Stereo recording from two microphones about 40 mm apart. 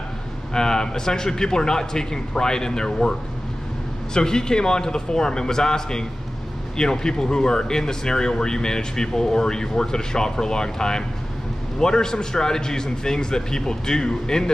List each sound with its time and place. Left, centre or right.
0.5 s speech: centre